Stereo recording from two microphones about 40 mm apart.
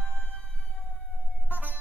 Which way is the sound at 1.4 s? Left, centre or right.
Right.